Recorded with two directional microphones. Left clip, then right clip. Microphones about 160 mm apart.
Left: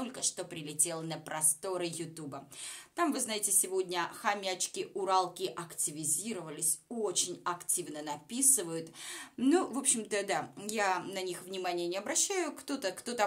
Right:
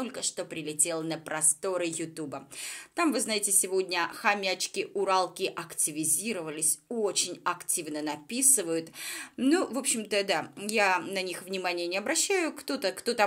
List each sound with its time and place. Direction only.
0.0 s speech: 15° right (ahead or behind)